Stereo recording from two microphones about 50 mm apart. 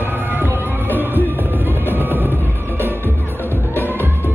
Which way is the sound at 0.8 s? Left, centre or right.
Left.